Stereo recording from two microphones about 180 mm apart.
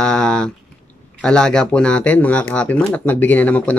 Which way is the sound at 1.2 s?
5° left (ahead or behind).